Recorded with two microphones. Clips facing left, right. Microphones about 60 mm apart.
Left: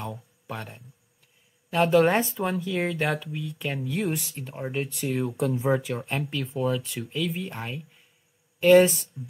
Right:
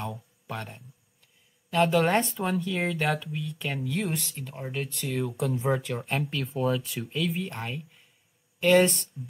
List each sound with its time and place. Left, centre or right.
0.0 s a sound: centre
1.7 s speech: centre
4.4 s speech: centre